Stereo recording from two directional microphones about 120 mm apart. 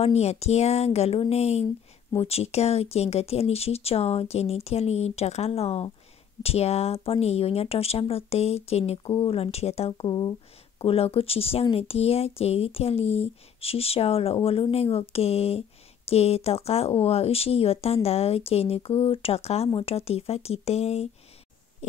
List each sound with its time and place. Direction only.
0.0 s speech: 60° left (ahead or behind); by 10.3 s 40° left (ahead or behind)
10.8 s speech: 50° left (ahead or behind)